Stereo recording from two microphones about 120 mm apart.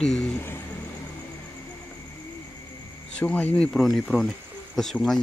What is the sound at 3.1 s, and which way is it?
Speech, 10° left (ahead or behind).